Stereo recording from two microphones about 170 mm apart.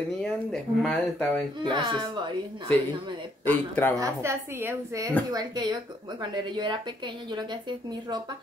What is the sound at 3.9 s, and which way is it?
A woman's voice, 20° right (ahead or behind).